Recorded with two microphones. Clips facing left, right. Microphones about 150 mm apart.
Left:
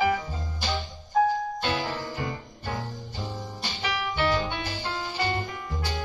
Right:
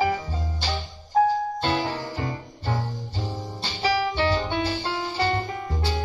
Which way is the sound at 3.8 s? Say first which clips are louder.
Right 6 dB; 35° right (ahead or behind).